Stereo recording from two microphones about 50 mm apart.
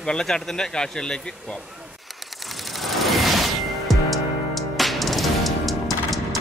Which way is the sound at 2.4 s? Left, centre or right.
Centre.